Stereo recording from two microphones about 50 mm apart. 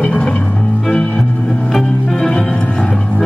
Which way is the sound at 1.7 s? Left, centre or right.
Centre.